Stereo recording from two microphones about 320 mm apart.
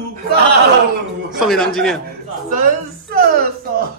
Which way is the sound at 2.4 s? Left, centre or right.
Right.